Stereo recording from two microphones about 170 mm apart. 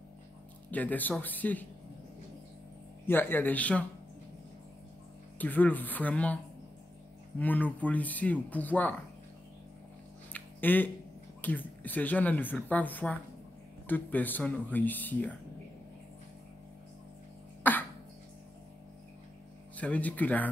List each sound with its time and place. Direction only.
0.7 s speech: 10° left (ahead or behind)
3.1 s speech: 10° left (ahead or behind)
5.4 s speech: 10° left (ahead or behind)
10.3 s a sound: 10° left (ahead or behind)
11.4 s speech: 10° left (ahead or behind)
17.6 s cough: 10° left (ahead or behind)
19.8 s speech: 10° left (ahead or behind)